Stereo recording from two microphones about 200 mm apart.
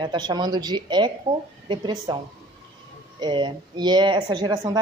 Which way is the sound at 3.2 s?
20° right (ahead or behind).